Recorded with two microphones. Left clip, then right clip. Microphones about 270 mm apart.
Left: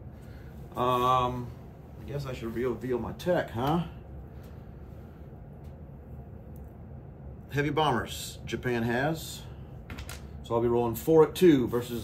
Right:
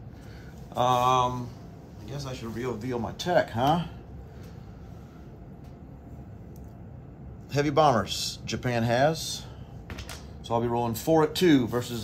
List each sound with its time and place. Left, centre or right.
0.7 s a man's voice: right
7.5 s a man's voice: centre
10.5 s speech: right